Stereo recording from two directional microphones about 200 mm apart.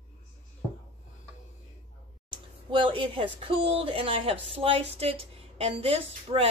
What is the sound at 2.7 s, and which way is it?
A woman's voice, 25° right (ahead or behind).